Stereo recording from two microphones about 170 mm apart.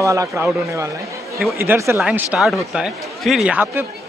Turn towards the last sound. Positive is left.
turn(degrees=-10)  # may be behind; listen again after turning